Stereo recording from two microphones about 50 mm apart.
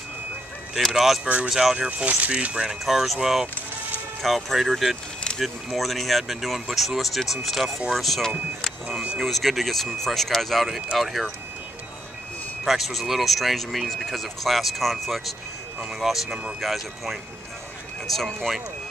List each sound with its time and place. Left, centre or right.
0.7 s speech: centre
1.8 s speech: right
2.7 s speech: centre
12.6 s speech: centre